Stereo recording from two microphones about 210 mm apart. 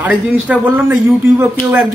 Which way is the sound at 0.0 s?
5° right (ahead or behind).